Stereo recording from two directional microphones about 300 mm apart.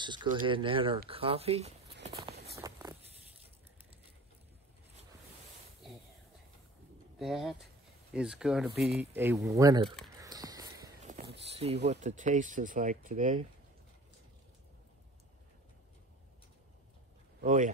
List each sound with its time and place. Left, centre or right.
0.0 s speech: centre
2.0 s walk: centre
2.5 s a sound: centre
7.2 s speech: centre
10.1 s a sound: centre
11.9 s speech: right
17.4 s speech: right